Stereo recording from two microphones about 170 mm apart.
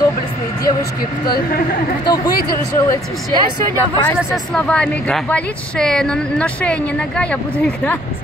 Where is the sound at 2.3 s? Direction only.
60° left (ahead or behind).